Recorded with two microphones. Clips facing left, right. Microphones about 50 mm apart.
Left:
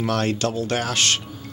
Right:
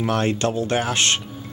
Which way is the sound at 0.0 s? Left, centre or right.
Right.